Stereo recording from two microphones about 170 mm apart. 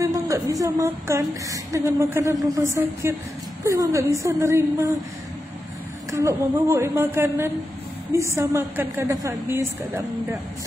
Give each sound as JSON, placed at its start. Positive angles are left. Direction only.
{"t": 0.0, "sound": "a woman's voice", "side_deg": -20}
{"t": 6.1, "sound": "a woman's voice", "side_deg": -15}